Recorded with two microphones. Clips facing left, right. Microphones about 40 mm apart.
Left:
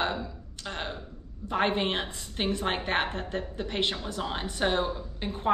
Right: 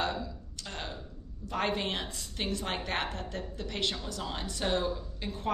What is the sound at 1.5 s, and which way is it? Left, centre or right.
A woman's voice, left.